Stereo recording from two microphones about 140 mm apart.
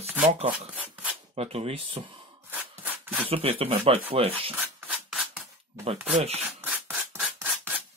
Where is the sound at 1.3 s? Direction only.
45° right (ahead or behind).